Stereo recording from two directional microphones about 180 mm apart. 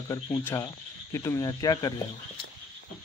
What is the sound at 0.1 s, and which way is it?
Speech, 15° left (ahead or behind).